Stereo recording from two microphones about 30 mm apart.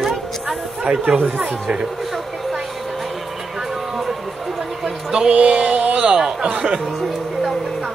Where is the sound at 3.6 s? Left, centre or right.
Centre.